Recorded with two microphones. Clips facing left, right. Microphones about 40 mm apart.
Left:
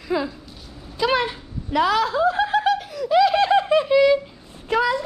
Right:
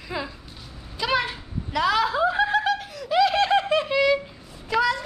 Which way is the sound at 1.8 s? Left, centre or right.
Centre.